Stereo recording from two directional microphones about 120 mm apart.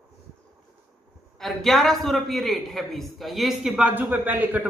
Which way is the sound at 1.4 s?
Centre (ahead or behind).